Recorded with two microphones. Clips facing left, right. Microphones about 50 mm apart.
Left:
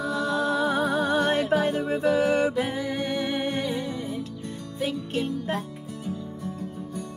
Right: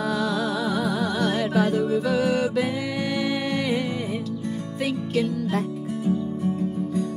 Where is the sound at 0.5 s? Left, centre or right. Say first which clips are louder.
Left 1 dB; left.